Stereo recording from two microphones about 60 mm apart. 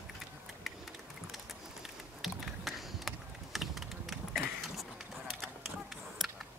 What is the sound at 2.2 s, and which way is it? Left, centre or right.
Computer keyboard, centre.